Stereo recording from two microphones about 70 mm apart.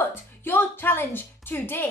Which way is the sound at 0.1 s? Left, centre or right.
Left.